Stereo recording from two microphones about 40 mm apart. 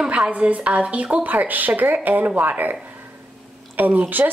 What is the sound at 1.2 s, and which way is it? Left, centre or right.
A woman's voice, right.